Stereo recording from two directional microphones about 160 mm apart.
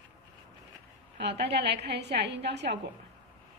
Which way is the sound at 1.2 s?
90° right.